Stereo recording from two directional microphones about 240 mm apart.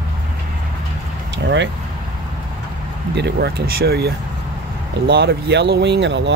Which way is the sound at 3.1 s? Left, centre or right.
Right.